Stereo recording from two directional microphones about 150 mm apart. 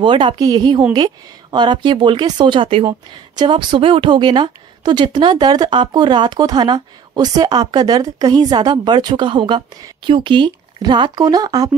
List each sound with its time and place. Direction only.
0.0 s speech: 35° right (ahead or behind)